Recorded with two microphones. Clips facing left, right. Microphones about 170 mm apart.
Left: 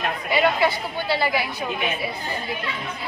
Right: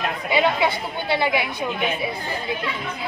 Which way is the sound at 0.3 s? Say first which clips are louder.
Even; 25° right (ahead or behind).